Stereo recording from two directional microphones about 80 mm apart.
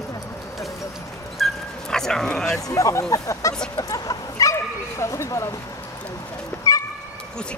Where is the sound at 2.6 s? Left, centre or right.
Left.